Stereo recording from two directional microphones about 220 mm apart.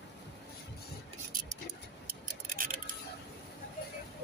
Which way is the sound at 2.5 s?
40° right (ahead or behind).